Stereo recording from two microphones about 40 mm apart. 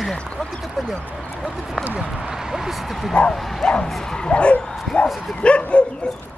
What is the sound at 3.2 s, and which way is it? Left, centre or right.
Speech, left.